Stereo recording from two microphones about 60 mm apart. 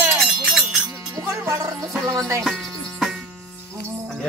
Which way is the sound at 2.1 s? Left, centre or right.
Right.